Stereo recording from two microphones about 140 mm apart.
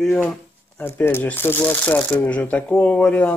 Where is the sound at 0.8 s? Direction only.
15° left (ahead or behind).